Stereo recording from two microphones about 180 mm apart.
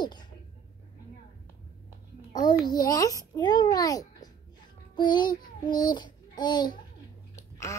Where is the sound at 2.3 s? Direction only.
25° left (ahead or behind).